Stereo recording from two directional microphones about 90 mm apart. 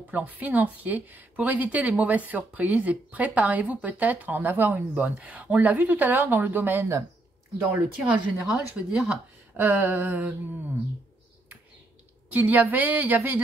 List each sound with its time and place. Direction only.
0.1 s a woman's voice: 20° right (ahead or behind)
8.5 s speech: 10° right (ahead or behind)
9.6 s speech: 20° right (ahead or behind)
12.3 s speech: 20° right (ahead or behind)